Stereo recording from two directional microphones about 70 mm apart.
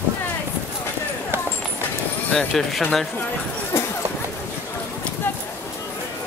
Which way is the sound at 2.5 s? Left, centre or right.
Centre.